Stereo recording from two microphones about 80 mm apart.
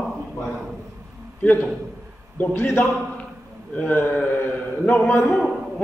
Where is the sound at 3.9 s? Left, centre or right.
Left.